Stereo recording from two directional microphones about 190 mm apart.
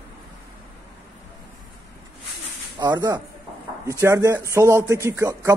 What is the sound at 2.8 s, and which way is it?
Speech, 20° right (ahead or behind).